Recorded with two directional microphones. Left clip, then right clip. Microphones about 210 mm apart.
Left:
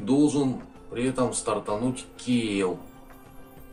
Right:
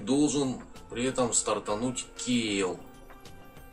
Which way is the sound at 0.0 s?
5° right (ahead or behind).